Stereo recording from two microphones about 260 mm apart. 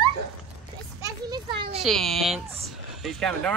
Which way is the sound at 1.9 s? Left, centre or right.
Centre.